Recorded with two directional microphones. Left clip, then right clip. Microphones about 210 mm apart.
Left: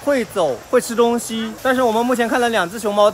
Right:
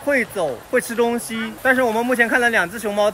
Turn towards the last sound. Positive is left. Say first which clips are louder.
# left 3 dB
turn(degrees=15)  # may be behind; listen again after turning